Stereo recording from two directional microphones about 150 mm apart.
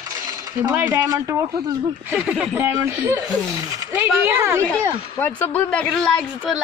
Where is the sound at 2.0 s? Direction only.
5° right (ahead or behind).